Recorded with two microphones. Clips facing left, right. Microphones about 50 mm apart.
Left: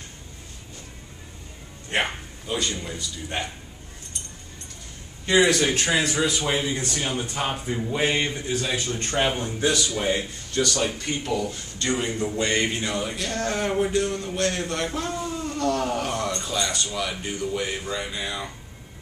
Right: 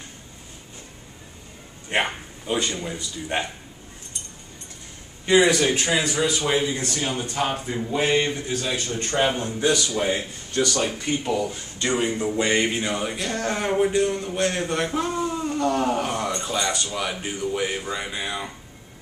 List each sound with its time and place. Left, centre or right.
1.9 s speech: centre
2.4 s a man's voice: right
5.2 s speech: centre
5.6 s speech: centre
6.8 s speech: centre
10.1 s speech: centre
14.7 s a sound: centre
16.6 s speech: right